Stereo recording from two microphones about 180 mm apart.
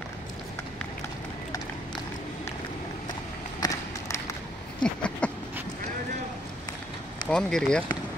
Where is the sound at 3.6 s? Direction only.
20° left (ahead or behind).